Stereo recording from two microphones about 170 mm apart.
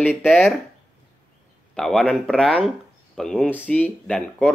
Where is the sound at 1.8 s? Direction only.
5° left (ahead or behind).